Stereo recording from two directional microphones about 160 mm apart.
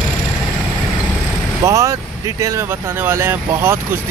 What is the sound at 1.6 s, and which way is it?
Speech, 20° right (ahead or behind).